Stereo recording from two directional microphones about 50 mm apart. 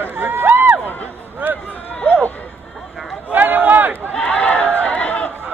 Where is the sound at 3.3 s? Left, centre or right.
Right.